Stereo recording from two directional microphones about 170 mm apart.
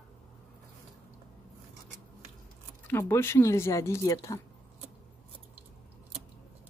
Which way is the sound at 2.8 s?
15° left (ahead or behind).